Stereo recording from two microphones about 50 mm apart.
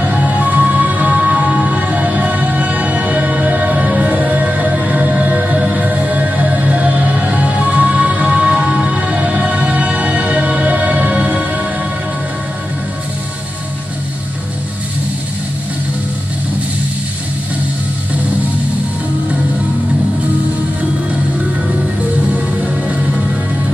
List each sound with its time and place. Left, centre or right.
0.0 s music: right